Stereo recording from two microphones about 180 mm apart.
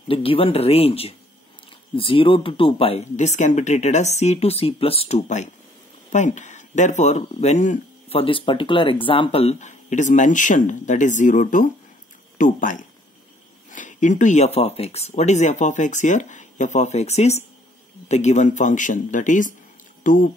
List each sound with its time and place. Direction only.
0.1 s speech: 30° left (ahead or behind); by 20.2 s 45° left (ahead or behind)